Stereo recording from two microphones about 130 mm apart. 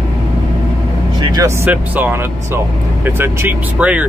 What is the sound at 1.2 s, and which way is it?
Speech, 30° right (ahead or behind).